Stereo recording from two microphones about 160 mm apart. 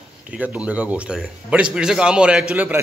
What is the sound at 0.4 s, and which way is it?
A man's voice, 10° right (ahead or behind).